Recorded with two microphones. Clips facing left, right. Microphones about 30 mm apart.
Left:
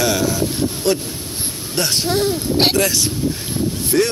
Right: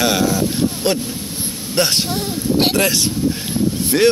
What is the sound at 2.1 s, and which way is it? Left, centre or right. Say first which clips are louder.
Speech: left 2 dB; left.